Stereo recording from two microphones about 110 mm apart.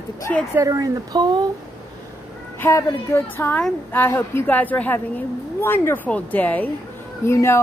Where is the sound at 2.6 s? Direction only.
25° left (ahead or behind).